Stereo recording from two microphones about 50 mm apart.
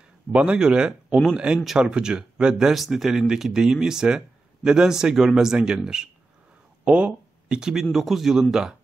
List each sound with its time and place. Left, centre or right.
0.3 s speech: right
0.6 s speech: centre
6.8 s a sound: right
7.9 s speech: centre